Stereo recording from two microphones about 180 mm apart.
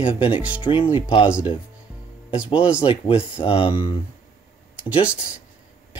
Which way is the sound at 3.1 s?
30° left (ahead or behind).